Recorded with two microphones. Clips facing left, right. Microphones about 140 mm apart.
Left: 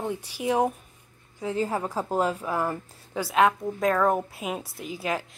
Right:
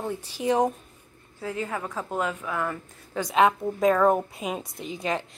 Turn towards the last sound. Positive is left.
turn(degrees=5)  # may be behind; listen again after turning